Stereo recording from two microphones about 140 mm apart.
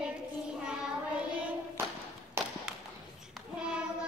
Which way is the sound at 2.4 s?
15° right (ahead or behind).